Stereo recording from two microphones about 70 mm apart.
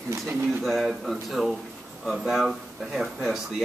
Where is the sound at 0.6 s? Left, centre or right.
Centre.